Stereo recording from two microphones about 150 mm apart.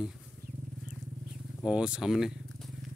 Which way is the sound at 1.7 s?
5° right (ahead or behind).